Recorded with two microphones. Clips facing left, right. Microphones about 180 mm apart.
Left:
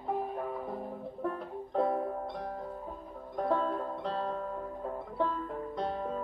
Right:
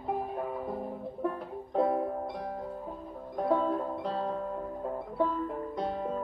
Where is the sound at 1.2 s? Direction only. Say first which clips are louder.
Right 2 dB; 10° right (ahead or behind).